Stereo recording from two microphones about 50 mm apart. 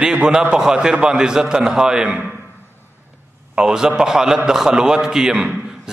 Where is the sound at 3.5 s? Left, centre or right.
Centre.